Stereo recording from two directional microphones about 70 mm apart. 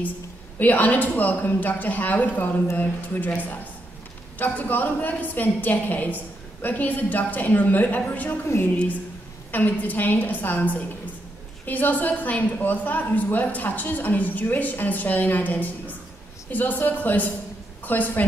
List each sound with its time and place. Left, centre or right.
0.6 s a woman's voice: left
4.4 s a woman's voice: left
9.5 s a woman's voice: left